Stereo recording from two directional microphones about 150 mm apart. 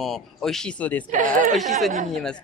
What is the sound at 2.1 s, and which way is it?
Speech, 5° left (ahead or behind).